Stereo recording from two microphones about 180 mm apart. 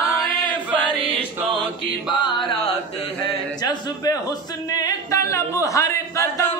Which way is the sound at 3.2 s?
20° left (ahead or behind).